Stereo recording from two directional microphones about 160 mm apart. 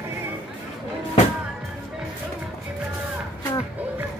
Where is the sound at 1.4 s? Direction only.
5° right (ahead or behind).